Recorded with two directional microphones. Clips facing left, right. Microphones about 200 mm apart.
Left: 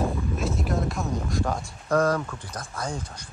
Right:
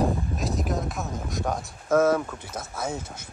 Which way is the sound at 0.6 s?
Centre (ahead or behind).